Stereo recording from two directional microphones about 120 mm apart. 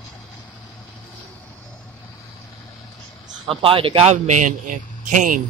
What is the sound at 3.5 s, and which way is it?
A man's voice, 50° right (ahead or behind).